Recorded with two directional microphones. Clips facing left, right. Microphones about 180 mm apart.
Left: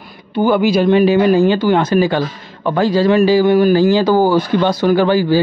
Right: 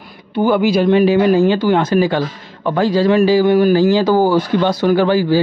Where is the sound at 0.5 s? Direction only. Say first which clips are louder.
Left 1 dB; 15° left (ahead or behind).